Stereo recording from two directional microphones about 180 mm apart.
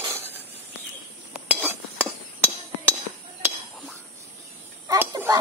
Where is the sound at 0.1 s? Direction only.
10° right (ahead or behind).